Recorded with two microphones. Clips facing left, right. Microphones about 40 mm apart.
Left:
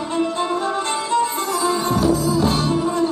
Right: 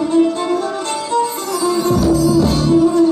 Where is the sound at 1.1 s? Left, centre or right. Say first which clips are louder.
Right 2 dB; left.